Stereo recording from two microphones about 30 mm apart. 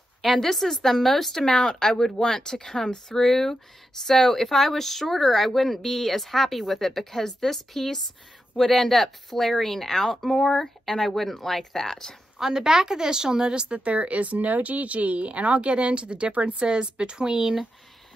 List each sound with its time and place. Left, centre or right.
0.2 s speech: centre
1.4 s speech: left
12.4 s a woman's voice: centre
13.7 s speech: right
16.5 s a woman's voice: right